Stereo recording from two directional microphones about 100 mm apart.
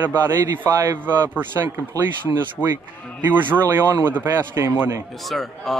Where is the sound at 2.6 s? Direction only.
15° left (ahead or behind).